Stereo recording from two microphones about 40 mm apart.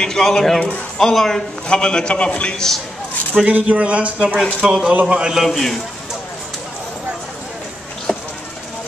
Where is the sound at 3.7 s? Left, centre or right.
Right.